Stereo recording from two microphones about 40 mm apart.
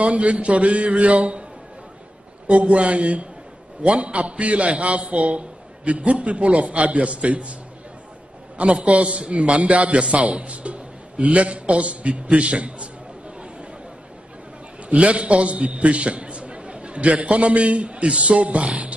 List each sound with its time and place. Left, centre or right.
0.0 s a man's voice: right
2.4 s a man's voice: right
8.5 s a man's voice: right
14.9 s a man's voice: right